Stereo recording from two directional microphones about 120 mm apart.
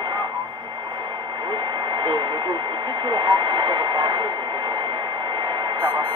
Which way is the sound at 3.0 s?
40° right (ahead or behind).